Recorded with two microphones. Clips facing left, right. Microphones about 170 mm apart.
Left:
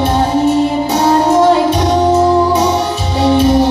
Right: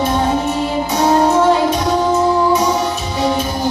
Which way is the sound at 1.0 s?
30° left (ahead or behind).